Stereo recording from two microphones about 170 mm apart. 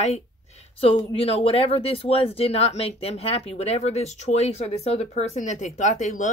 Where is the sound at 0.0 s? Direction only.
40° left (ahead or behind).